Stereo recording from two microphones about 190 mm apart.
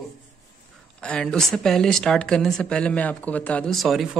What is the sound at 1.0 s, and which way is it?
Speech, 5° left (ahead or behind).